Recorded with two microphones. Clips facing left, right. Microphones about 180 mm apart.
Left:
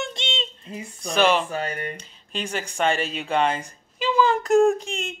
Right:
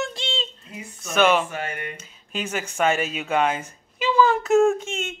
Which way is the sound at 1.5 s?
35° left (ahead or behind).